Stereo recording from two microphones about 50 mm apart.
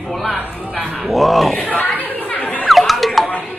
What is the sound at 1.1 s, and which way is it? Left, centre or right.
Speech, centre.